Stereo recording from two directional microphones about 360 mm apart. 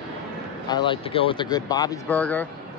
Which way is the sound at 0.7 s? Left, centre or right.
Centre.